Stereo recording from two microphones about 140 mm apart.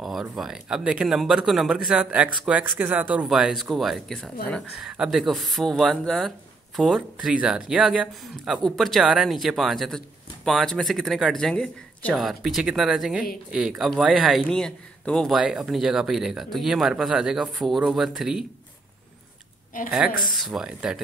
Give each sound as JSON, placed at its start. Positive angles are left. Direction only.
{"t": 0.0, "sound": "speech", "side_deg": 0}
{"t": 19.7, "sound": "a woman's voice", "side_deg": 75}
{"t": 20.2, "sound": "speech", "side_deg": 0}